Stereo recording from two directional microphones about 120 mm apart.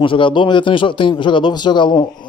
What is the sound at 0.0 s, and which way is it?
A man's voice, 45° left (ahead or behind).